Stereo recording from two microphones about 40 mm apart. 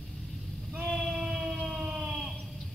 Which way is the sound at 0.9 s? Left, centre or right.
Centre.